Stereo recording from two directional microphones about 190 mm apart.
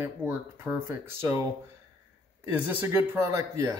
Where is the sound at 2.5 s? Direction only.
10° right (ahead or behind).